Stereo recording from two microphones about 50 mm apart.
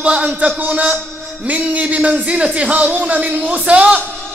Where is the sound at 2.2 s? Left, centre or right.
Right.